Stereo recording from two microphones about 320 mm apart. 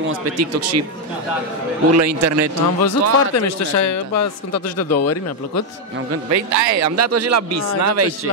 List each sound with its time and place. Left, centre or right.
0.0 s speech: right
2.0 s a man's voice: right
2.8 s a man's voice: left
6.3 s speech: right